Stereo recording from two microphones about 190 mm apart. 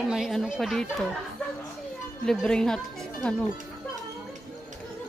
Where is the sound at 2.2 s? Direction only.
5° left (ahead or behind).